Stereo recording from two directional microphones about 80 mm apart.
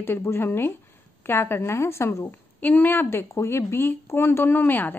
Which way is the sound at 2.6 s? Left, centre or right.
Left.